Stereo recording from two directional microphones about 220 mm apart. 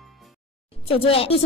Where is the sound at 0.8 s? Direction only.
25° left (ahead or behind).